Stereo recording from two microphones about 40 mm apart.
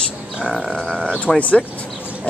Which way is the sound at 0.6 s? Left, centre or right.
Centre.